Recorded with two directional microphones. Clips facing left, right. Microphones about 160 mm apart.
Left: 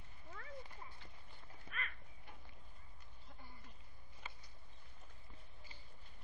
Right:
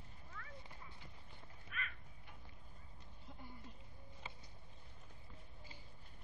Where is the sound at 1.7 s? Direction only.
35° left (ahead or behind).